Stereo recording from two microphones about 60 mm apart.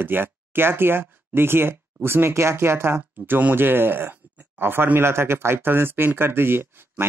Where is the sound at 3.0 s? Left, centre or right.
Right.